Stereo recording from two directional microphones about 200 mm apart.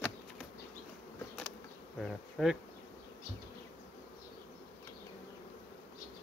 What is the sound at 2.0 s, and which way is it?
Speech, centre (ahead or behind).